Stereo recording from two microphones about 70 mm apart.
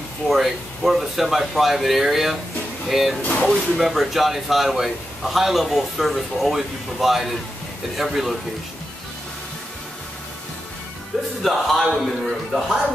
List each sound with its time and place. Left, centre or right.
0.3 s speech: centre
3.2 s speech: left
3.4 s speech: centre
11.4 s speech: centre